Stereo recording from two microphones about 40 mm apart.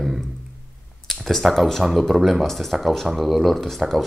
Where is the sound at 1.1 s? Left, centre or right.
Centre.